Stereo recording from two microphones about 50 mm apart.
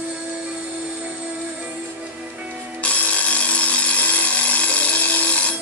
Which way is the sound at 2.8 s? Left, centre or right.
Left.